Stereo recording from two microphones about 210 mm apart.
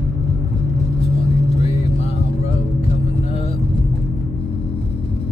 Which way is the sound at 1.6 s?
30° left (ahead or behind).